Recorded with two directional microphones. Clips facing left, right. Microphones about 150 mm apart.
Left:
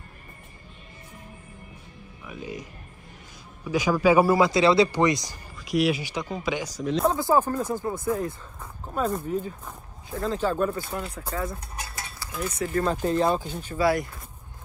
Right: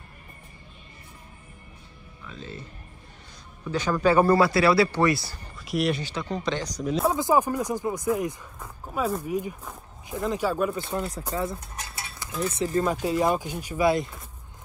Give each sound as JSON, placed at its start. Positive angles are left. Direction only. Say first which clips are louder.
{"t": 2.2, "sound": "speech", "louder": "left 3 dB", "side_deg": 15}
{"t": 5.7, "sound": "speech", "louder": "left 2 dB", "side_deg": 0}
{"t": 6.8, "sound": "speech", "louder": "left 1 dB", "side_deg": -5}
{"t": 7.2, "sound": "speech", "louder": "even", "side_deg": -15}
{"t": 8.8, "sound": "speech", "louder": "left 1 dB", "side_deg": -5}
{"t": 10.8, "sound": "speech", "louder": "right 3 dB", "side_deg": -25}
{"t": 13.0, "sound": "speech", "louder": "left 1 dB", "side_deg": -10}